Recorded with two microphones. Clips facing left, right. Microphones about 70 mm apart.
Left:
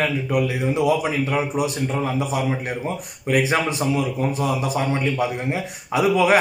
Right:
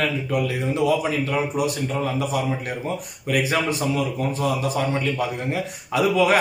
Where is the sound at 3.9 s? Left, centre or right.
Left.